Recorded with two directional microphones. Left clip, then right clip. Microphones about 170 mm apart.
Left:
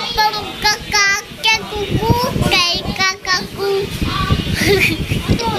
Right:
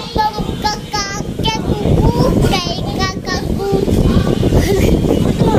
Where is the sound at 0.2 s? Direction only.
15° right (ahead or behind).